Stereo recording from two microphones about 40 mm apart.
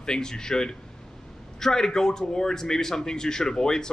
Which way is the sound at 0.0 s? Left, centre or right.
Centre.